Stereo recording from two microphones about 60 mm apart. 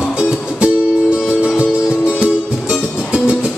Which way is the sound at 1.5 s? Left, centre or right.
Centre.